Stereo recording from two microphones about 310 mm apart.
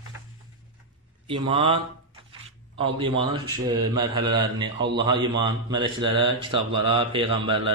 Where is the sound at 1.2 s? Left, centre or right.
Centre.